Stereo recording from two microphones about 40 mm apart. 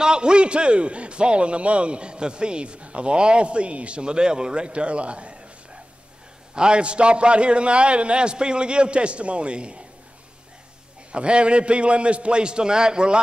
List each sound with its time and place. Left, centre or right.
0.0 s a man's voice: right
6.5 s a man's voice: right
11.1 s a man's voice: right